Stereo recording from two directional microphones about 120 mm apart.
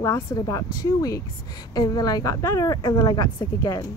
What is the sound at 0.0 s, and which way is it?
A woman's voice, 30° left (ahead or behind).